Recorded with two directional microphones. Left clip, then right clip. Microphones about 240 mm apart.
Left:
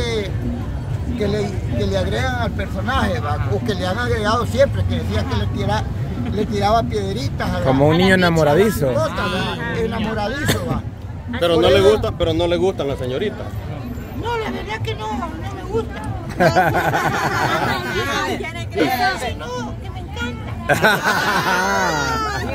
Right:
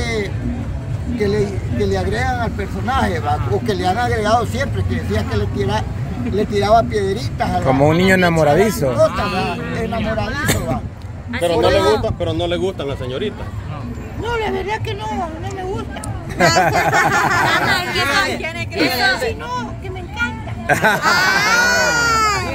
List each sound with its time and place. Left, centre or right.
0.0 s music: centre
1.2 s speech: centre
11.4 s speech: left
12.3 s a man's voice: left
14.2 s speech: centre
16.6 s snicker: centre
17.3 s speech: right
20.2 s music: centre
21.5 s baby cry: right